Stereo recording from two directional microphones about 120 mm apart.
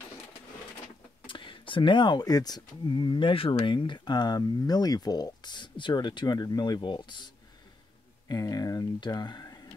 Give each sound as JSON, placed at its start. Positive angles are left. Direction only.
{"t": 1.2, "sound": "speech", "side_deg": 45}
{"t": 8.3, "sound": "speech", "side_deg": 30}